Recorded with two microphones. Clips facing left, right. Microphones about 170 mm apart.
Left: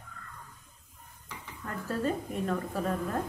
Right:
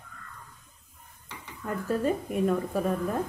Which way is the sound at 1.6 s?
10° right (ahead or behind).